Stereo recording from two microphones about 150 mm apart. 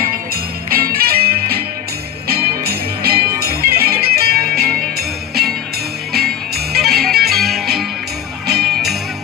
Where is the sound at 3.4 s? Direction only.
90° right.